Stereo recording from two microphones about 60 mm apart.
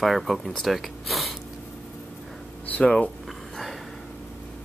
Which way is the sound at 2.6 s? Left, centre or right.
Left.